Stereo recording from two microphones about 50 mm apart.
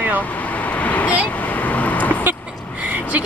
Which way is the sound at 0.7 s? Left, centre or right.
Left.